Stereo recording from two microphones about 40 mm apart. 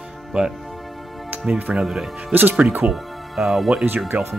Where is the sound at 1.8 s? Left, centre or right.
Centre.